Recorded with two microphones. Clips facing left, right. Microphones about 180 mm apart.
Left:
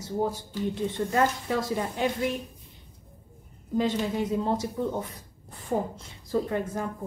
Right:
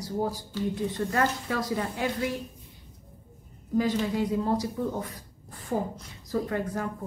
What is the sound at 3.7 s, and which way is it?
Speech, 25° left (ahead or behind).